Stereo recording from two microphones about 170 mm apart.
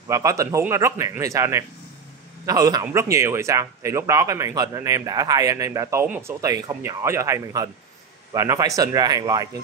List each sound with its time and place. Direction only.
0.1 s speech: 20° right (ahead or behind)